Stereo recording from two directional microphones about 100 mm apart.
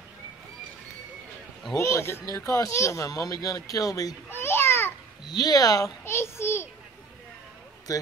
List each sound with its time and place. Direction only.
1.8 s speech: 30° left (ahead or behind)
4.3 s babbling: 25° left (ahead or behind)
5.3 s speech: 40° left (ahead or behind)
6.0 s child singing: 25° left (ahead or behind)
7.9 s speech: 35° left (ahead or behind)